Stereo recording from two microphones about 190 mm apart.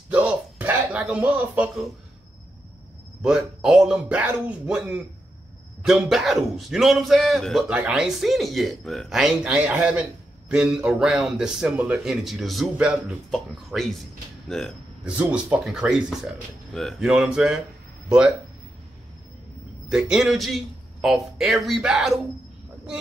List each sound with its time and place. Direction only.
0.1 s a sound: 5° right (ahead or behind)
3.2 s speech: 5° right (ahead or behind)
19.9 s speech: 5° right (ahead or behind)